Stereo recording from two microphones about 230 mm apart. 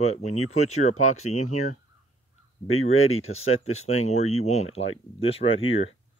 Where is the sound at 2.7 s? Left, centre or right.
Left.